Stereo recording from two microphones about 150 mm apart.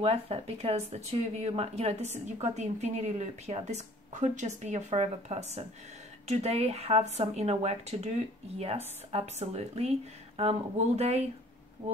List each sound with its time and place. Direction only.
0.0 s speech: 40° right (ahead or behind)
9.1 s speech: 45° right (ahead or behind)